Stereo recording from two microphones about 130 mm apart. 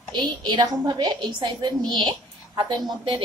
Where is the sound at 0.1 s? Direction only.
35° right (ahead or behind).